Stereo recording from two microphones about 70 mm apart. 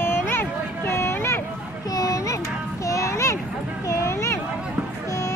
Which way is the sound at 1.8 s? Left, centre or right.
Left.